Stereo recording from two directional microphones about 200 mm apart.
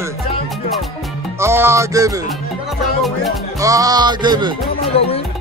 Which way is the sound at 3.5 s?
15° right (ahead or behind).